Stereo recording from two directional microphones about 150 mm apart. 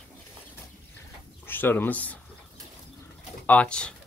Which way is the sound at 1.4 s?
15° left (ahead or behind).